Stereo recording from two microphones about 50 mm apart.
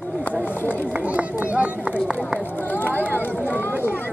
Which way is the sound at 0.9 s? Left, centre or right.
Right.